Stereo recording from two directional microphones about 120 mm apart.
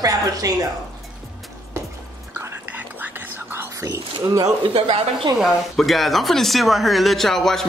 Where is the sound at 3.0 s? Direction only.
20° right (ahead or behind).